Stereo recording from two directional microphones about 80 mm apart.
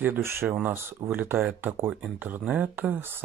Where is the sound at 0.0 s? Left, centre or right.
Right.